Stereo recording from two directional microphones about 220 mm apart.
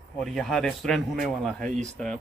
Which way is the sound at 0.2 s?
Centre (ahead or behind).